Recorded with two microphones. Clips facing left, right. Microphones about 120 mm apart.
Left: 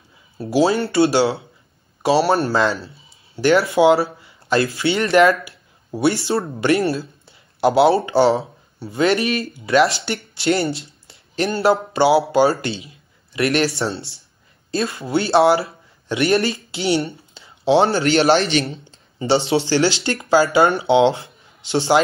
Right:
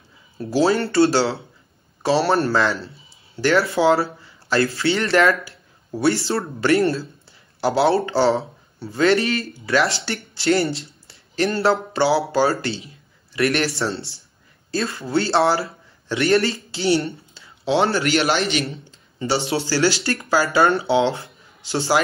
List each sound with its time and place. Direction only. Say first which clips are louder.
0.4 s speech: left 1 dB; 15° left (ahead or behind)
2.5 s speech: left 1 dB; 20° left (ahead or behind)
10.8 s a sound: right 1 dB; 25° left (ahead or behind)
11.9 s speech: left 3 dB; 20° left (ahead or behind)